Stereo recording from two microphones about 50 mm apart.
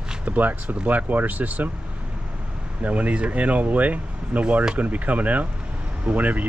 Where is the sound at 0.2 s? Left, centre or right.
Right.